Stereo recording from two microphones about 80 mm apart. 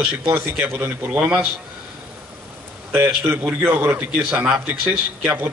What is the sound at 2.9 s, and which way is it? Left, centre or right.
A man's voice, right.